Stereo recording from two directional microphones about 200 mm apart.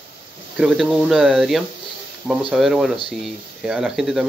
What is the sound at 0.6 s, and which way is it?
Speech, centre (ahead or behind).